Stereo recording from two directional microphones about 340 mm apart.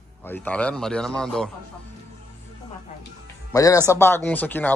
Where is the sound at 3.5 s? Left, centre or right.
Centre.